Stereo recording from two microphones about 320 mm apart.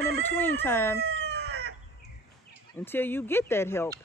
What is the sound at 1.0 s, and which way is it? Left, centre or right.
Chicken, right.